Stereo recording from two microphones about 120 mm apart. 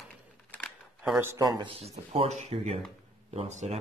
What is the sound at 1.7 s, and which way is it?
Speech, 55° right (ahead or behind).